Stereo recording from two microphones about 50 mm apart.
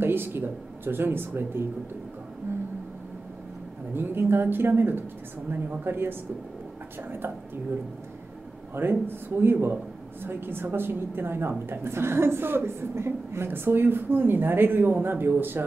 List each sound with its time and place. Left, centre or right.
0.0 s a woman's voice: right
2.5 s a sound: right
3.9 s a woman's voice: right
8.7 s a woman's voice: right
13.5 s a woman's voice: right